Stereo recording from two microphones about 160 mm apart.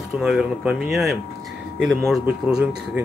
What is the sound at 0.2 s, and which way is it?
Speech, 5° right (ahead or behind).